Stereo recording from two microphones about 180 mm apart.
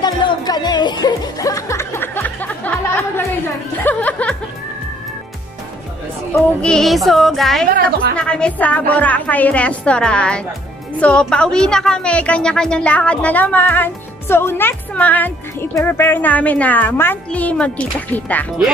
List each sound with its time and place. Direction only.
0.0 s music: 25° left (ahead or behind); by 4.4 s 10° left (ahead or behind)
6.3 s music: 5° left (ahead or behind)
8.2 s a woman's voice: 5° left (ahead or behind)